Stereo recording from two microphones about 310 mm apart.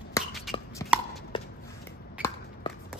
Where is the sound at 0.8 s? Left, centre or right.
Centre.